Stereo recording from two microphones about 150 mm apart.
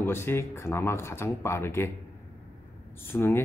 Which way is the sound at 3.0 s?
15° left (ahead or behind).